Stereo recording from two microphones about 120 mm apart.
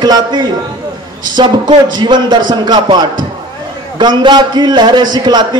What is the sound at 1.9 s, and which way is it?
A man's voice, 40° right (ahead or behind).